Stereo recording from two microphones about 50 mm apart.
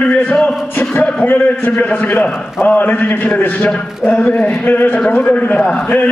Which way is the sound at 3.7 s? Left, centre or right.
Left.